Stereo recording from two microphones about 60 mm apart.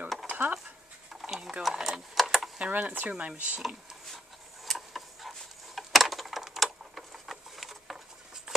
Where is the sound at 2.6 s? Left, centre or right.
Right.